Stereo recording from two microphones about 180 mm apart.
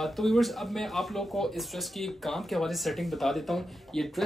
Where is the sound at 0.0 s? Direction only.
Centre (ahead or behind).